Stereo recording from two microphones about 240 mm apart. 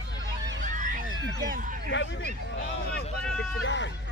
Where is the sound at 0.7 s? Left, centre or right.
Right.